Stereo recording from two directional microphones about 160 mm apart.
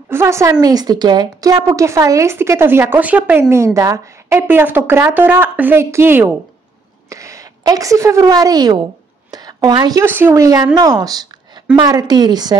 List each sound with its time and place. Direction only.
0.1 s a woman's voice: 15° right (ahead or behind)
9.3 s a sound: 25° right (ahead or behind)
10.0 s a woman's voice: 15° right (ahead or behind)